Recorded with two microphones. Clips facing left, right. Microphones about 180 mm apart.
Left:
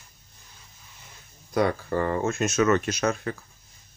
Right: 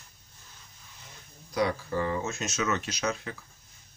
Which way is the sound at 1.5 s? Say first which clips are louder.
Left 4 dB; 55° left (ahead or behind).